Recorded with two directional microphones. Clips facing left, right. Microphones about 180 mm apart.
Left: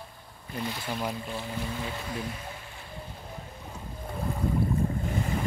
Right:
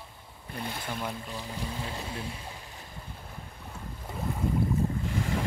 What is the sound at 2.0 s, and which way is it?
Speech, 30° right (ahead or behind).